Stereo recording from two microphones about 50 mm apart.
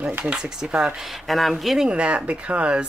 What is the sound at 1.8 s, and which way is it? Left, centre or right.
Speech, right.